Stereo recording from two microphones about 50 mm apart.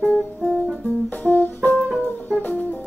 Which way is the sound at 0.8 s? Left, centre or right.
Left.